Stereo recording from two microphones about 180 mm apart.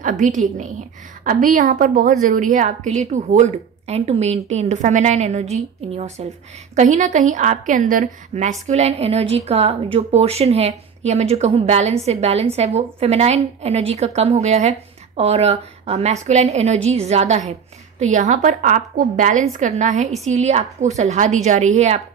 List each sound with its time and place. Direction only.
0.0 s a woman's voice: 45° right (ahead or behind)